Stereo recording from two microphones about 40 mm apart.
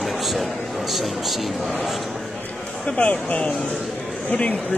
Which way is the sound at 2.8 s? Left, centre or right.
Left.